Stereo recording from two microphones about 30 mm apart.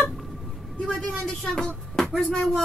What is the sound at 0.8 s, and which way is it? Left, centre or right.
Speech, left.